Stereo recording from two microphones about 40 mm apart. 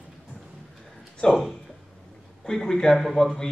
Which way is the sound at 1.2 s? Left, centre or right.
Left.